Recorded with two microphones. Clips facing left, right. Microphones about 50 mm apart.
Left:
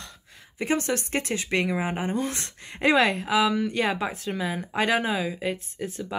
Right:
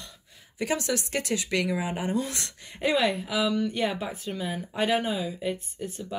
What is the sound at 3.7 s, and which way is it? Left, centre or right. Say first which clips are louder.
Speech: left 3 dB; left.